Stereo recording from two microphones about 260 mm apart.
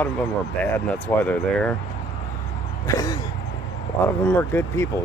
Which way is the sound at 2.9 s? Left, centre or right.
Centre.